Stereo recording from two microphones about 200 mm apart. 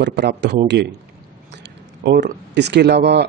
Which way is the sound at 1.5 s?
55° right (ahead or behind).